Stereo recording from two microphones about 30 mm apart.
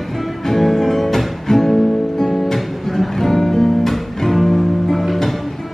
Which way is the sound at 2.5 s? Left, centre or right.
Centre.